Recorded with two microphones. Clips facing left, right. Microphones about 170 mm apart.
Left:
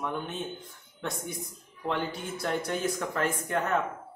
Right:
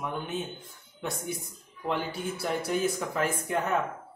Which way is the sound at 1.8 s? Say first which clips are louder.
Right 1 dB; 5° right (ahead or behind).